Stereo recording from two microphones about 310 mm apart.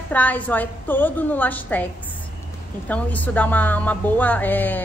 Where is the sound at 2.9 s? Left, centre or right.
Centre.